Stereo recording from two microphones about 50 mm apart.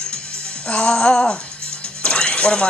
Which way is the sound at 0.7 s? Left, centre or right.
Centre.